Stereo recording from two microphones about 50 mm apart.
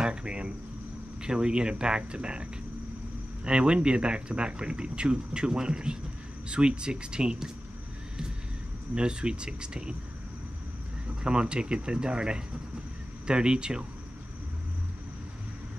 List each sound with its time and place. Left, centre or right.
0.0 s speech: centre
8.9 s speech: centre
11.2 s speech: centre